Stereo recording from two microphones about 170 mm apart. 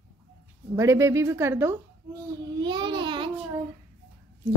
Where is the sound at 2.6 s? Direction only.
25° right (ahead or behind).